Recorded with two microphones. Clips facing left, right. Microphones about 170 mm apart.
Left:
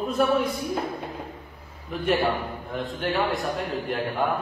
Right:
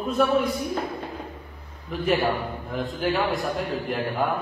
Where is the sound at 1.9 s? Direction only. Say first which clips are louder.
Even; centre (ahead or behind).